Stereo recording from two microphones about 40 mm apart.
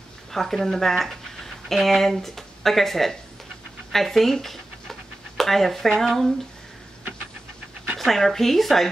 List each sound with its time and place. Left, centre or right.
0.3 s speech: centre
8.0 s speech: centre